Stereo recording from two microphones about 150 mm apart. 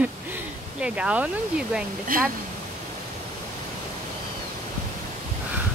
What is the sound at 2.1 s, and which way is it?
Speech, 70° right (ahead or behind).